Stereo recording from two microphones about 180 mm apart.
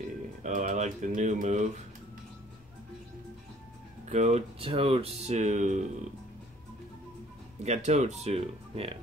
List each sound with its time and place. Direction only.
0.4 s speech: 45° right (ahead or behind)
4.1 s speech: 40° right (ahead or behind)
7.6 s speech: 40° right (ahead or behind)